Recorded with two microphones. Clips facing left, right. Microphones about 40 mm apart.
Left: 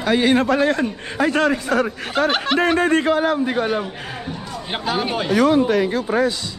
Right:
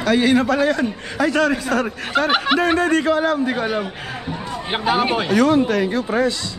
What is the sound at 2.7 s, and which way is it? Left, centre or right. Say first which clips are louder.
Speech: even; left.